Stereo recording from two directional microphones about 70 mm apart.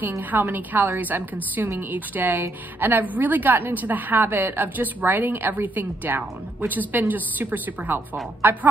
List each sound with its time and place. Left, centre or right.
0.2 s a woman's voice: right